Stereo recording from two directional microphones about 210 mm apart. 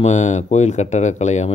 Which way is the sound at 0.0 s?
35° left (ahead or behind).